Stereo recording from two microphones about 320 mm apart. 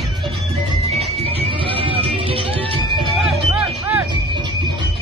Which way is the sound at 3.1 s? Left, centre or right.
Centre.